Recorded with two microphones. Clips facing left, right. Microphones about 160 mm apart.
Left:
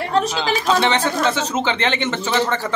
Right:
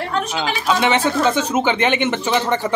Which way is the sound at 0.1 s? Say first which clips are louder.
Left 5 dB; 35° left (ahead or behind).